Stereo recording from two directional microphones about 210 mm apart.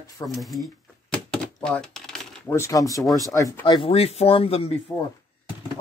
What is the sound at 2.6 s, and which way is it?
Speech, 15° left (ahead or behind).